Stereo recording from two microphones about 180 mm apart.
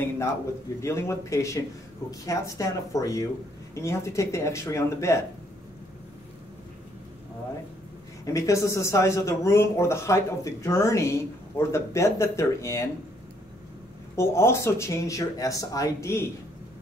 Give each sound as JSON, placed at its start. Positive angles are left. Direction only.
{"t": 0.7, "sound": "a man's voice", "side_deg": 15}
{"t": 8.3, "sound": "a man's voice", "side_deg": 15}
{"t": 14.1, "sound": "a man's voice", "side_deg": 15}